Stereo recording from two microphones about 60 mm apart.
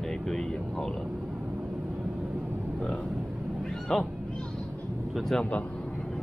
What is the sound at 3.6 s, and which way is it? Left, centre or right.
Cat, centre.